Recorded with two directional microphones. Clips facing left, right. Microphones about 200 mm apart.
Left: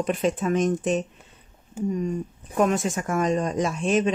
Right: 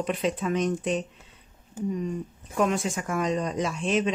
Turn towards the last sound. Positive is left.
turn(degrees=50)  # may be behind; listen again after turning